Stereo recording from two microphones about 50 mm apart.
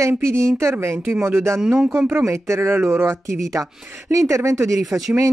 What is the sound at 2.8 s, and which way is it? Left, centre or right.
Speech, right.